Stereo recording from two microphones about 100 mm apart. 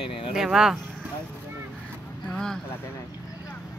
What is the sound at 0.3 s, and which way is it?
Speech, 5° right (ahead or behind).